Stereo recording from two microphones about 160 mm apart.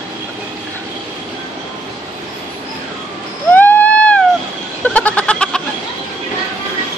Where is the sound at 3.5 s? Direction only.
10° left (ahead or behind).